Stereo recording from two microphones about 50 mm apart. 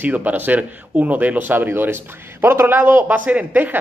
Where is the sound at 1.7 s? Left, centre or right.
Right.